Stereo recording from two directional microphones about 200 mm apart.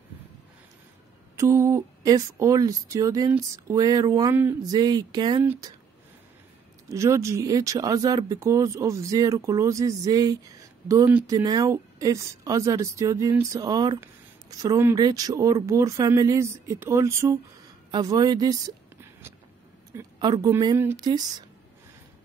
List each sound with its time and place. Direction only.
1.3 s a woman's voice: 15° right (ahead or behind)
5.4 s a woman's voice: 10° right (ahead or behind)
6.9 s a woman's voice: 15° right (ahead or behind)
19.9 s a woman's voice: 20° right (ahead or behind)